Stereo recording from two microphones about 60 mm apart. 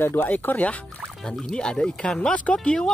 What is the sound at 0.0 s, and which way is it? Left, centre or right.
Music, left.